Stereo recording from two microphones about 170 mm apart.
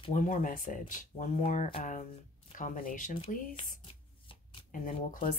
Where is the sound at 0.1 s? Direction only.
50° left (ahead or behind).